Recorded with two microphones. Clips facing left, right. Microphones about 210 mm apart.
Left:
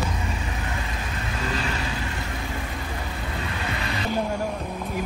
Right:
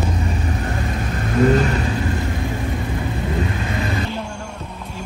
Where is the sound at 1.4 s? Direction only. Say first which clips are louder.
Right 16 dB; 45° right (ahead or behind).